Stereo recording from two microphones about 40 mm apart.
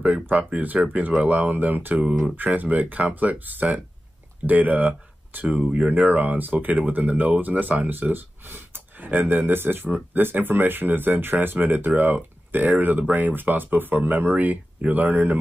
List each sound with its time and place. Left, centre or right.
0.0 s speech: right
8.1 s speech: right
9.8 s speech: right